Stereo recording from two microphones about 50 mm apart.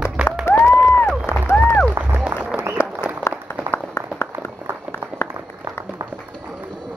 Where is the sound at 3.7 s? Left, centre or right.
Left.